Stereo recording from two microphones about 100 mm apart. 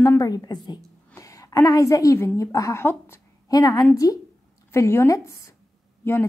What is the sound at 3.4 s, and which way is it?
A woman's voice, 35° left (ahead or behind).